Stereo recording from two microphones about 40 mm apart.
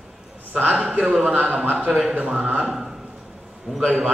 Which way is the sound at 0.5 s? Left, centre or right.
Right.